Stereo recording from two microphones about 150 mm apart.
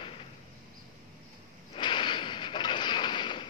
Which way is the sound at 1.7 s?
30° left (ahead or behind).